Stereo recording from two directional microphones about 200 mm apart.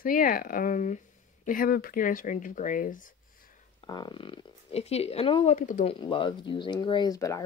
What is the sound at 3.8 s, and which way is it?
Speech, 20° left (ahead or behind).